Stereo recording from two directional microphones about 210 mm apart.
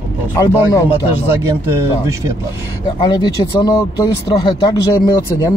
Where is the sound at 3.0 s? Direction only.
20° left (ahead or behind).